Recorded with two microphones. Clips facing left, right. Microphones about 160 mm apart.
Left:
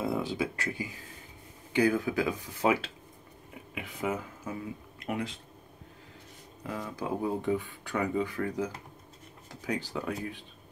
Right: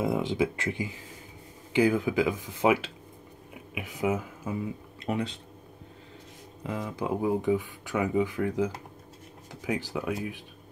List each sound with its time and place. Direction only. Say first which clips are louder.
0.0 s speech: right 4 dB; 20° right (ahead or behind)
6.6 s speech: right 3 dB; 20° right (ahead or behind)